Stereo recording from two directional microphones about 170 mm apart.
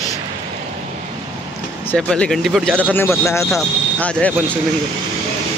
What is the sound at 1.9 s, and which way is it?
Speech, 5° left (ahead or behind).